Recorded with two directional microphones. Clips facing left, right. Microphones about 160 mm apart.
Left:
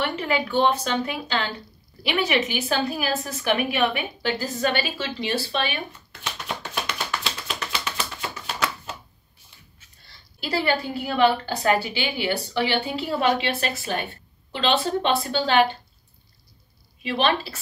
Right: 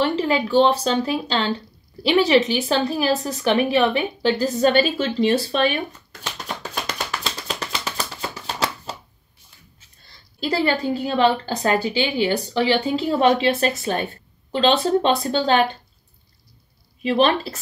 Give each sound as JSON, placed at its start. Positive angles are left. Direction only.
{"t": 0.0, "sound": "a woman's voice", "side_deg": -30}
{"t": 6.6, "sound": "a sound", "side_deg": -40}
{"t": 10.4, "sound": "a woman's voice", "side_deg": -30}
{"t": 17.0, "sound": "a woman's voice", "side_deg": -35}